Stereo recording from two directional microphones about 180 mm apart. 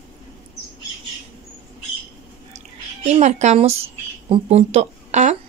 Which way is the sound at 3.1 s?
40° right (ahead or behind).